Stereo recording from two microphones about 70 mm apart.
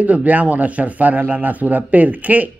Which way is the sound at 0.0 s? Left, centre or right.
Right.